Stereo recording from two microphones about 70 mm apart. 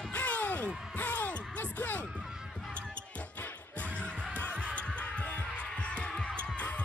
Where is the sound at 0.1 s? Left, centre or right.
Centre.